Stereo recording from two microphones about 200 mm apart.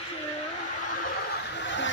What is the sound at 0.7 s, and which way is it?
Snicker, 40° left (ahead or behind).